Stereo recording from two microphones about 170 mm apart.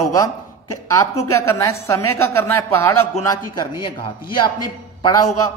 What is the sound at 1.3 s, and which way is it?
A woman's voice, 15° left (ahead or behind).